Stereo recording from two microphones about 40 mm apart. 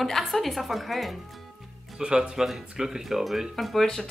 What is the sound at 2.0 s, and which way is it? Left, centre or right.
Speech, right.